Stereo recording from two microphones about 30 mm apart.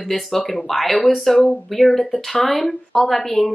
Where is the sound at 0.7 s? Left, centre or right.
Centre.